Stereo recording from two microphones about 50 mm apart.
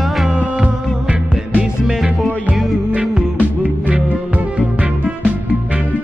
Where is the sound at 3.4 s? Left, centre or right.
Right.